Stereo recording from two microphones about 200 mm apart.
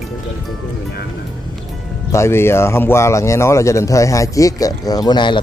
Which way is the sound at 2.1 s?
15° left (ahead or behind).